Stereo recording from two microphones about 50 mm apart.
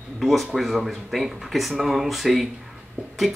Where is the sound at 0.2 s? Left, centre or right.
Centre.